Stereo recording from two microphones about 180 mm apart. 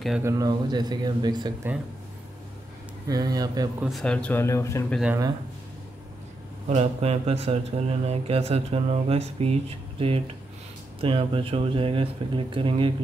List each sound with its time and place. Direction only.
0.2 s speech: 20° right (ahead or behind)
3.1 s speech: 20° right (ahead or behind)
3.8 s speech: centre (ahead or behind)
6.7 s speech: 35° right (ahead or behind)